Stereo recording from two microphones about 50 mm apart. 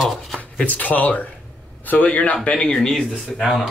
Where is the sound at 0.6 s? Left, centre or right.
Left; by 3.4 s centre.